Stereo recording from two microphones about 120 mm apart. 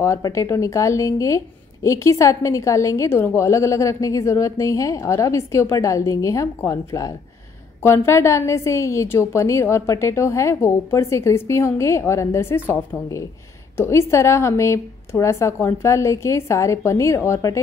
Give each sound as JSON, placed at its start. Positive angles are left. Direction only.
{"t": 0.0, "sound": "a woman's voice", "side_deg": 25}